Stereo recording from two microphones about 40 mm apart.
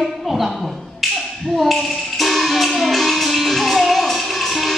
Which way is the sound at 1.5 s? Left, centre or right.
Centre.